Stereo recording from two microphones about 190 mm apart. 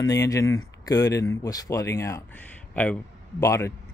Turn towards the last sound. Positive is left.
turn(degrees=15)  # may be behind; listen again after turning